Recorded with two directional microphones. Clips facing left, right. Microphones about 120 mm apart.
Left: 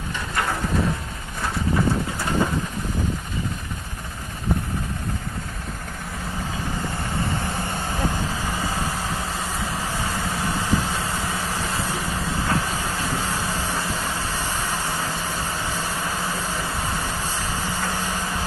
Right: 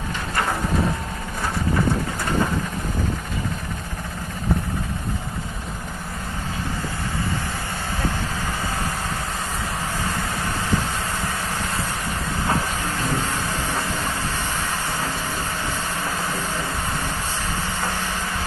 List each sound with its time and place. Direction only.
13.1 s vehicle: 5° left (ahead or behind)
13.5 s vehicle: 35° left (ahead or behind)